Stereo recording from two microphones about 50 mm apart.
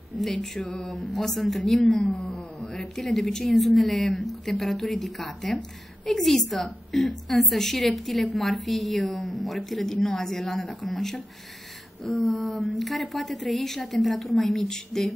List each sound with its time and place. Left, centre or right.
0.2 s a woman's voice: centre